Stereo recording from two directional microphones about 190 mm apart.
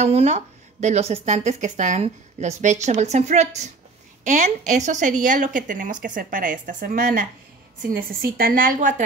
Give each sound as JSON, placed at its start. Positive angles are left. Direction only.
{"t": 0.0, "sound": "a woman's voice", "side_deg": -35}